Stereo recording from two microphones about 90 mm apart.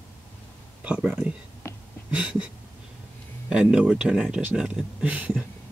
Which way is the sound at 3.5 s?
10° right (ahead or behind).